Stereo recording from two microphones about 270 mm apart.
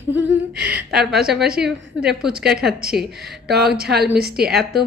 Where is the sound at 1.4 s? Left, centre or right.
Right.